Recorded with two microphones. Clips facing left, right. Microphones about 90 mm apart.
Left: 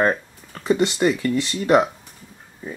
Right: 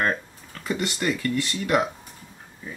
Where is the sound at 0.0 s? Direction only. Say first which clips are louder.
Left 5 dB; 15° left (ahead or behind).